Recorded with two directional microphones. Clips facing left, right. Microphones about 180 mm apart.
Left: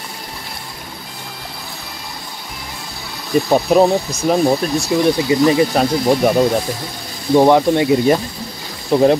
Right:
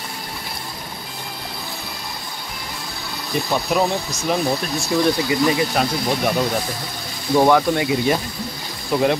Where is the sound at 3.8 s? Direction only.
35° left (ahead or behind).